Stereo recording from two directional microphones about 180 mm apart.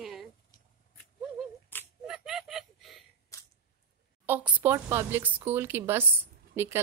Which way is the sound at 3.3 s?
15° left (ahead or behind).